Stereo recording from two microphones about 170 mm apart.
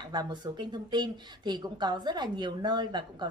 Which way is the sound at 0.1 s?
25° right (ahead or behind).